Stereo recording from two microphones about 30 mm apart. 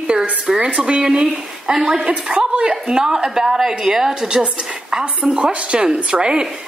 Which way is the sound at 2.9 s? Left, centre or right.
Right.